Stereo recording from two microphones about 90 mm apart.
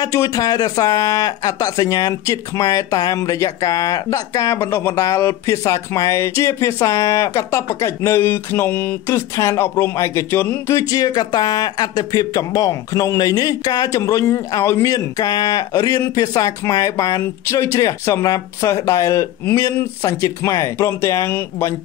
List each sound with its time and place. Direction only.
0.0 s speech: 40° left (ahead or behind)
3.2 s speech: 35° left (ahead or behind)
10.8 s speech: 45° left (ahead or behind)
21.3 s speech: 25° left (ahead or behind)